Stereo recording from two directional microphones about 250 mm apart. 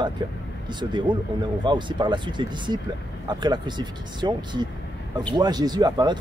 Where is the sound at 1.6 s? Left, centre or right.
Centre.